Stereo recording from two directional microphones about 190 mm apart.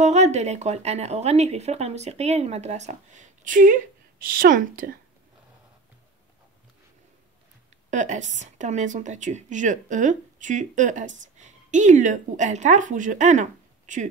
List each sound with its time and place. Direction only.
0.0 s speech: 35° right (ahead or behind)
7.9 s speech: 40° right (ahead or behind)